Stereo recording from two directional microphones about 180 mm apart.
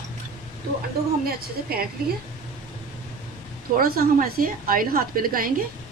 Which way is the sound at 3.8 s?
55° right (ahead or behind).